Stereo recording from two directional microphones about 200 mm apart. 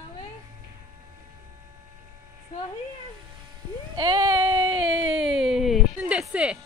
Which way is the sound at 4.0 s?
20° right (ahead or behind).